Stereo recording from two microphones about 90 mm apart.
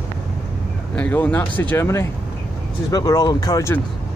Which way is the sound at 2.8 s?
45° left (ahead or behind).